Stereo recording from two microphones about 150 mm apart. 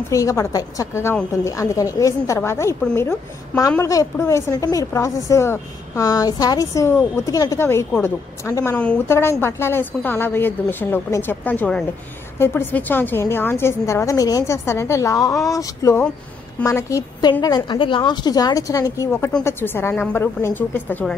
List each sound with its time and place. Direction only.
0.1 s a woman's voice: 20° left (ahead or behind)
3.7 s a woman's voice: 20° left (ahead or behind)
8.7 s a woman's voice: 10° left (ahead or behind)
19.0 s a woman's voice: 10° left (ahead or behind)